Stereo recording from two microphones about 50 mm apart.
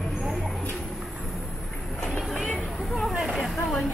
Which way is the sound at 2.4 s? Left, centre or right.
Left.